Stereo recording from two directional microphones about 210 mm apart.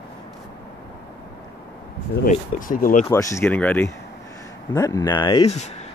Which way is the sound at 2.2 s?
40° left (ahead or behind).